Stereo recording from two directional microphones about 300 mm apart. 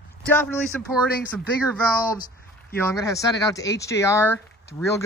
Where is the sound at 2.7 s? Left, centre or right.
Centre.